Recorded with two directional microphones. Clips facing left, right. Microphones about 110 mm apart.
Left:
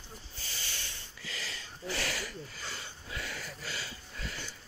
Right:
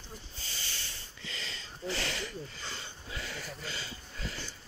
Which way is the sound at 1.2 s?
5° left (ahead or behind).